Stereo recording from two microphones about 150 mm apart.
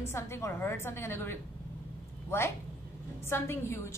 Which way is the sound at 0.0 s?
15° left (ahead or behind).